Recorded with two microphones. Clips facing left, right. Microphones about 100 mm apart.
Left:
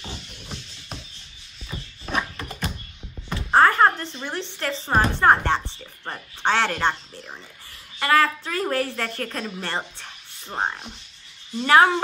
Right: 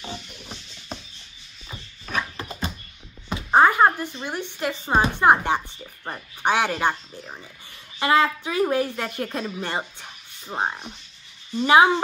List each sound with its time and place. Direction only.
0.0 s music: centre (ahead or behind)
2.3 s dog: 20° right (ahead or behind)
3.3 s a sound: 15° right (ahead or behind)
4.8 s a woman's voice: 15° right (ahead or behind)
11.6 s a woman's voice: 15° right (ahead or behind)